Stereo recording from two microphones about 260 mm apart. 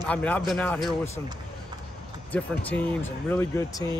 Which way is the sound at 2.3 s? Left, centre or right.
Centre.